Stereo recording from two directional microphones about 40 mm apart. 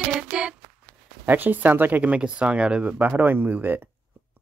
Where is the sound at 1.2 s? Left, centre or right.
Right.